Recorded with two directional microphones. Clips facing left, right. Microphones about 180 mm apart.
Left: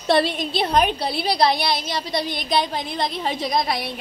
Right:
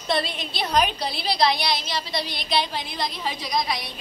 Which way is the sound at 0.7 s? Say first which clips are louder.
Left 1 dB; 55° left (ahead or behind).